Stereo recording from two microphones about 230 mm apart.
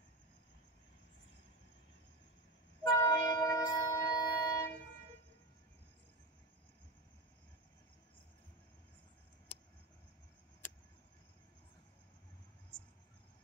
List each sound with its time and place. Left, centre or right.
2.8 s wind instrument: centre